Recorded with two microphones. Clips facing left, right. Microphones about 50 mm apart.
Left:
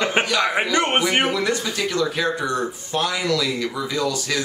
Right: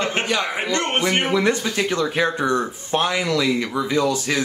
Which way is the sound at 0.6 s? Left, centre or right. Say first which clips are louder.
Left 2 dB; centre.